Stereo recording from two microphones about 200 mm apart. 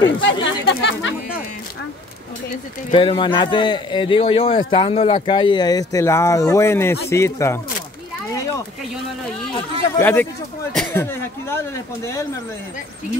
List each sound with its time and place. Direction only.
0.2 s speech: 65° left (ahead or behind)
2.9 s a man's voice: 25° left (ahead or behind)
9.9 s speech: 10° left (ahead or behind)